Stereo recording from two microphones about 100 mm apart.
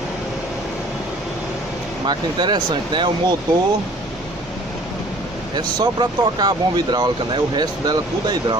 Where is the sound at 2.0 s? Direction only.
50° right (ahead or behind).